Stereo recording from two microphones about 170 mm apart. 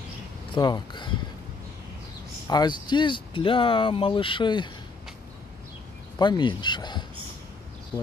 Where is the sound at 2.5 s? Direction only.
25° left (ahead or behind).